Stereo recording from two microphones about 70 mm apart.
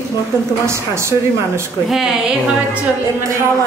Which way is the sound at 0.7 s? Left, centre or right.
Right.